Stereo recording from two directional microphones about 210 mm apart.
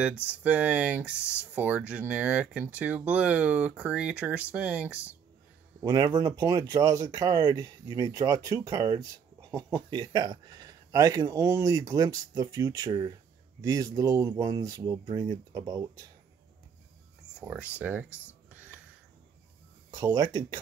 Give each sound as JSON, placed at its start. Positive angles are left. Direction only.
{"t": 0.2, "sound": "speech", "side_deg": -5}
{"t": 5.8, "sound": "speech", "side_deg": -15}
{"t": 17.4, "sound": "speech", "side_deg": -5}
{"t": 19.9, "sound": "speech", "side_deg": -15}